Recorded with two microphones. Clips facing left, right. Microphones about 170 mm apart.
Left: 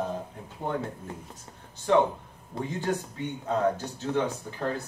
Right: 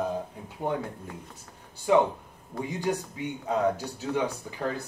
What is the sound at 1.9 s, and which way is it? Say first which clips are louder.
Speech: right 1 dB; 10° right (ahead or behind).